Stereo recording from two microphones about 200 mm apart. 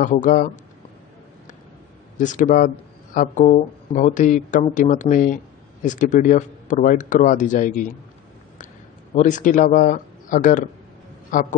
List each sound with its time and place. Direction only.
0.0 s speech: 40° left (ahead or behind)
2.1 s speech: 40° left (ahead or behind)
9.1 s speech: 40° left (ahead or behind)